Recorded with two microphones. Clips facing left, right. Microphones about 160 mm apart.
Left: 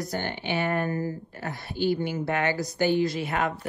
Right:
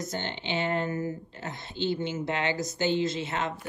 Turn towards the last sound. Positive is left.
turn(degrees=-25)  # may be behind; listen again after turning